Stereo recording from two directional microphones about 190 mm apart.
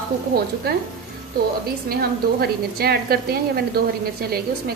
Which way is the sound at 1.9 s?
55° right (ahead or behind).